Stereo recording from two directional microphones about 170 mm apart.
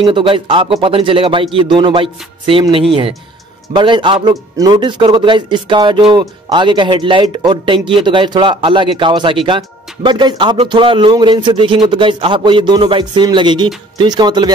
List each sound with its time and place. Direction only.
0.0 s speech: 30° right (ahead or behind)